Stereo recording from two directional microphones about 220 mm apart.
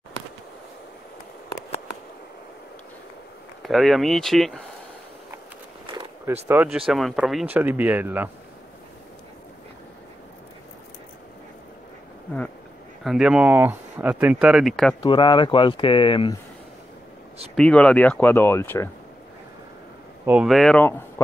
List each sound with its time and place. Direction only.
3.6 s speech: centre (ahead or behind)
6.4 s speech: 10° right (ahead or behind)
13.0 s speech: centre (ahead or behind)
15.0 s speech: 20° left (ahead or behind)
17.6 s speech: 5° left (ahead or behind)
20.2 s speech: 5° right (ahead or behind)